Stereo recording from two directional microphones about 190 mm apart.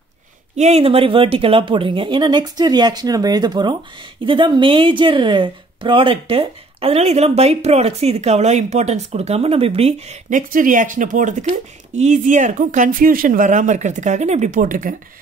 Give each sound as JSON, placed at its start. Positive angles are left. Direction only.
{"t": 0.6, "sound": "speech", "side_deg": -35}